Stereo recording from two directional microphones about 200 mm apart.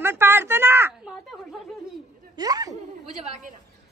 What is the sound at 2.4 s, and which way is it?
Speech, 20° right (ahead or behind).